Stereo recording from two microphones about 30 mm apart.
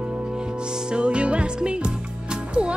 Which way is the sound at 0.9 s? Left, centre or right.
Right.